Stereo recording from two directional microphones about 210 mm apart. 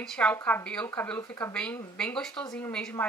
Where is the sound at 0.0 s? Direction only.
5° left (ahead or behind).